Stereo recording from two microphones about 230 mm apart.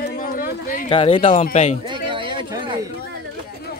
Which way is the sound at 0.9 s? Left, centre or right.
Left.